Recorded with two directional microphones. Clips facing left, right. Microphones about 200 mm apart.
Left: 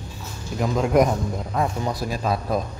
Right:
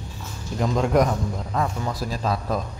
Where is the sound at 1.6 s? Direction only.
15° left (ahead or behind).